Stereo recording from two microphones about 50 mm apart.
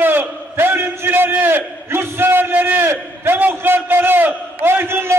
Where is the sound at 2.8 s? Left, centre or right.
Right.